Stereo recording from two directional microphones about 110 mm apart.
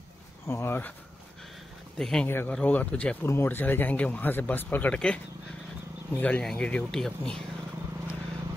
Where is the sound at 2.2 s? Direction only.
20° left (ahead or behind); by 7.4 s 5° left (ahead or behind).